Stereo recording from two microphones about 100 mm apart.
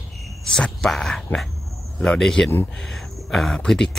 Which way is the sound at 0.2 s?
Centre (ahead or behind).